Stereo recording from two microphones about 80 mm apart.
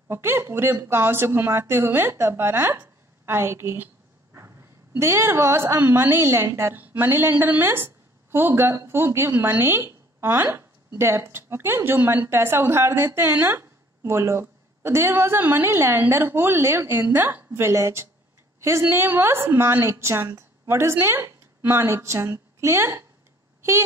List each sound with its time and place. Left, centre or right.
0.1 s a woman's voice: right
4.9 s a woman's voice: right